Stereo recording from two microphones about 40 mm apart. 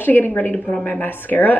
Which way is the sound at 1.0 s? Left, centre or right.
Left.